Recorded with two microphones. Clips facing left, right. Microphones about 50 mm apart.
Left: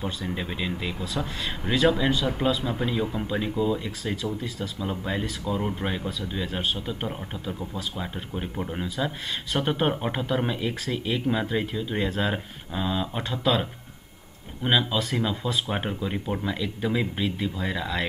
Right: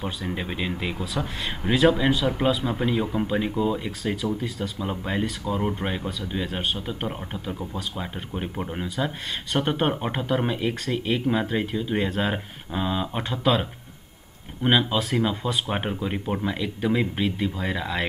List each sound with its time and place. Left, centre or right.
0.0 s speech: centre
1.0 s speech: centre
2.2 s speech: centre